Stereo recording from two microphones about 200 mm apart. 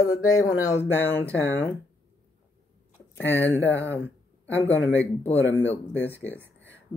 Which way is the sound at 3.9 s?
10° left (ahead or behind).